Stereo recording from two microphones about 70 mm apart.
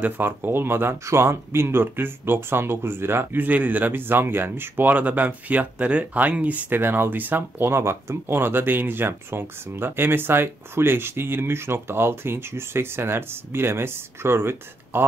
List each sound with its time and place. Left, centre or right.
0.0 s speech: right
6.8 s speech: right